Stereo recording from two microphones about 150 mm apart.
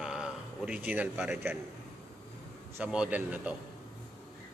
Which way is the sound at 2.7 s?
5° right (ahead or behind).